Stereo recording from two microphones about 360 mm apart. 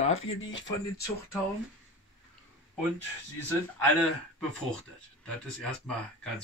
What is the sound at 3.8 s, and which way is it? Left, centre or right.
Speech, centre.